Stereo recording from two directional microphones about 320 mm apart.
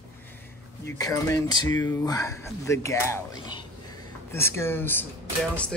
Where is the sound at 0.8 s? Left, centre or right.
Centre.